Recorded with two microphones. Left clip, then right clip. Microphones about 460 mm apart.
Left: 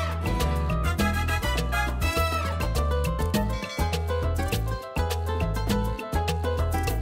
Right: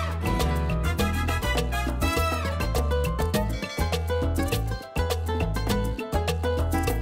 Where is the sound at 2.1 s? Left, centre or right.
Right.